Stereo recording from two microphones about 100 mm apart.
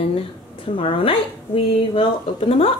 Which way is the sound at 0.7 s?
60° left (ahead or behind).